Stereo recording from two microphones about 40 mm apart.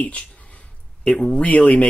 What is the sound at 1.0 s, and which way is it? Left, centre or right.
Speech, centre.